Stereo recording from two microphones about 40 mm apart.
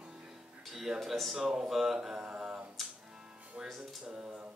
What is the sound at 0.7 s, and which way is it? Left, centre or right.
Speech, centre.